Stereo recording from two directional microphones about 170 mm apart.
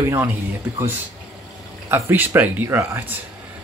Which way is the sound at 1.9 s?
15° right (ahead or behind).